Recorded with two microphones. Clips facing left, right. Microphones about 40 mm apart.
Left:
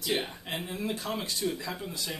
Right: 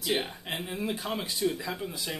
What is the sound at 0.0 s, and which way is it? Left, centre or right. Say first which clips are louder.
Speech: right 1 dB; centre.